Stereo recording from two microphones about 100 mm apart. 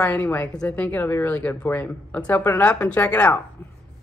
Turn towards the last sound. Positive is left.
turn(degrees=15)  # may be behind; listen again after turning